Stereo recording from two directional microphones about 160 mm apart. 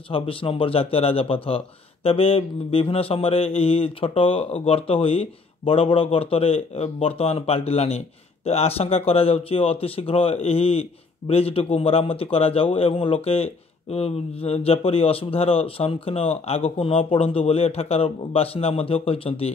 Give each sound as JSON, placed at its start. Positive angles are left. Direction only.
{"t": 0.1, "sound": "speech", "side_deg": 35}